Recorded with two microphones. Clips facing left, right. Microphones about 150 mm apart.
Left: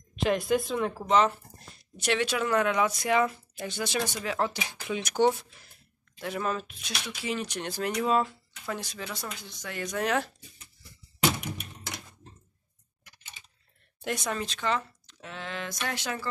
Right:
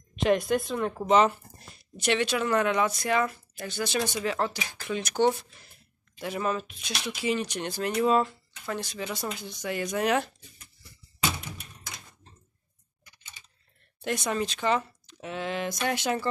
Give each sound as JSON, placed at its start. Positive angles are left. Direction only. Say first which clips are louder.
{"t": 0.1, "sound": "speech", "louder": "right 2 dB", "side_deg": 0}
{"t": 1.0, "sound": "speech", "louder": "right 3 dB", "side_deg": -10}
{"t": 2.0, "sound": "speech", "louder": "right 1 dB", "side_deg": 5}
{"t": 4.1, "sound": "speech", "louder": "right 1 dB", "side_deg": 0}
{"t": 6.1, "sound": "speech", "louder": "right 2 dB", "side_deg": -5}
{"t": 9.1, "sound": "speech", "louder": "right 5 dB", "side_deg": -15}
{"t": 11.5, "sound": "typewriter", "louder": "left 4 dB", "side_deg": 80}
{"t": 14.2, "sound": "speech", "louder": "right 5 dB", "side_deg": -5}